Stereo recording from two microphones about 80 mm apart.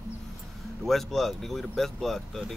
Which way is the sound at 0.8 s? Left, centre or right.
Centre.